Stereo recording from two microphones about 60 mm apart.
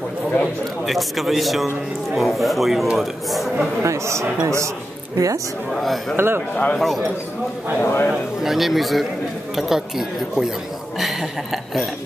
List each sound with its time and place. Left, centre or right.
0.8 s a man's voice: centre
3.8 s speech: right
5.1 s a woman's voice: right
5.7 s a man's voice: centre
6.1 s a man's voice: right
6.5 s speech: left
6.8 s a man's voice: centre
7.8 s speech: left
8.1 s a man's voice: centre